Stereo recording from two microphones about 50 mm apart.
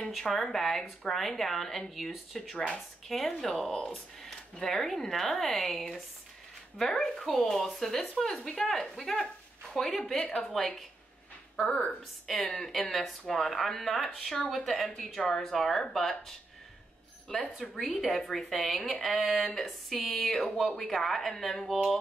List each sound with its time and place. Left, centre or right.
0.3 s speech: centre
11.7 s a woman's voice: left
12.7 s speech: centre
17.6 s speech: centre